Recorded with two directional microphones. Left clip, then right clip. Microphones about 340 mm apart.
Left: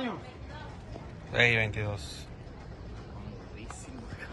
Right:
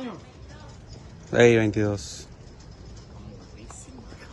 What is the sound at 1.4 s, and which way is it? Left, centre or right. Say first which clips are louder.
Speech: right 7 dB; right.